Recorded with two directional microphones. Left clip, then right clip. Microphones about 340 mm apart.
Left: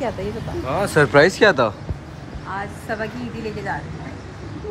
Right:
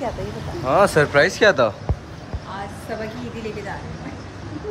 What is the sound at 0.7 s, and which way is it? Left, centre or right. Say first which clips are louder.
Speech: right 7 dB; centre.